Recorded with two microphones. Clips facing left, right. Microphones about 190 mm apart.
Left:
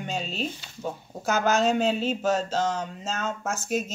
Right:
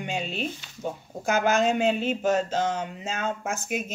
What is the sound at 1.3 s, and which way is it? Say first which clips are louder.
Speech: even; 55° right (ahead or behind).